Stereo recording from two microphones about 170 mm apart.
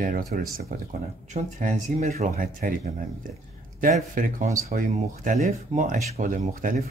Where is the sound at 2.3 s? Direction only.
55° right (ahead or behind).